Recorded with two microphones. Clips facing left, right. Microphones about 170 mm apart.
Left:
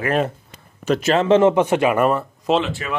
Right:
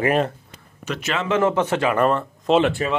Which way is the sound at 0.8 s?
35° left (ahead or behind).